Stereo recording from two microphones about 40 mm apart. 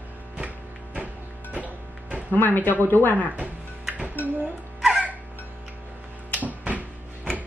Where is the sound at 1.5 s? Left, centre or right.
Right.